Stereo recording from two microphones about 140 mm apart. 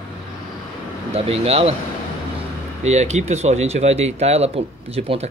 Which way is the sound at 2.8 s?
55° right (ahead or behind).